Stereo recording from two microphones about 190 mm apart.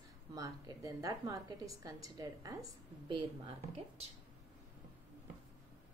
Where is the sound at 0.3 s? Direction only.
20° right (ahead or behind).